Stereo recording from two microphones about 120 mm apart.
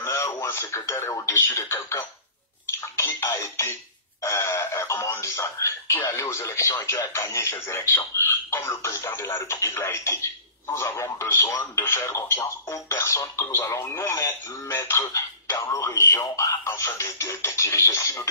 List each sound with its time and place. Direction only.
0.0 s speech: 20° left (ahead or behind)
3.0 s music: 25° left (ahead or behind)
4.2 s speech: 25° left (ahead or behind)